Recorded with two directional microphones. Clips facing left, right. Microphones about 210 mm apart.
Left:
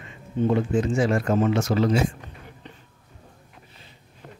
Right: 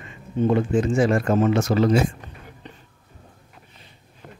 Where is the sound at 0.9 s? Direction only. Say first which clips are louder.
Right 3 dB; 55° right (ahead or behind).